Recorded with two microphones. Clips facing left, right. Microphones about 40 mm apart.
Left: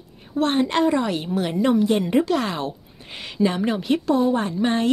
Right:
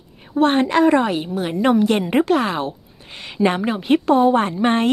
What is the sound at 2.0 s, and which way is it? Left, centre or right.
Speech, right.